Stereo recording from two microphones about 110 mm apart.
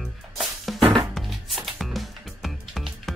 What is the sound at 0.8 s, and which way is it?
Music, 45° right (ahead or behind).